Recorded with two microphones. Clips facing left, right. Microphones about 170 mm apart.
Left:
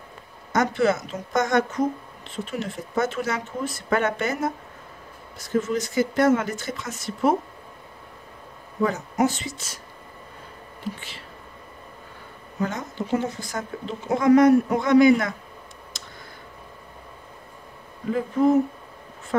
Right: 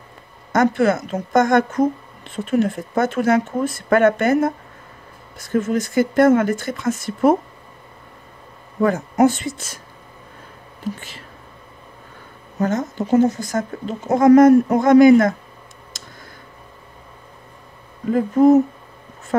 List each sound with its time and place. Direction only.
0.5 s speech: 50° right (ahead or behind)
8.8 s speech: 50° right (ahead or behind)
10.8 s speech: 45° right (ahead or behind)
12.5 s speech: 45° right (ahead or behind)
18.1 s speech: 45° right (ahead or behind)